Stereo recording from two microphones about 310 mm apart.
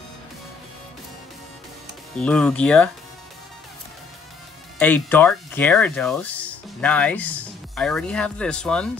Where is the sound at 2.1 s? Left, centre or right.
Centre.